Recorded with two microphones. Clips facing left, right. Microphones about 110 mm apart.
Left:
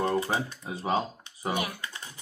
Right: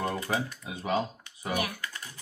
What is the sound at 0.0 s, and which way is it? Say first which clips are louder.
Speech: left 3 dB; 30° left (ahead or behind).